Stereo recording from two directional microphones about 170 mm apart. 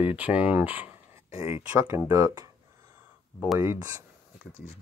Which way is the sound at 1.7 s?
15° right (ahead or behind).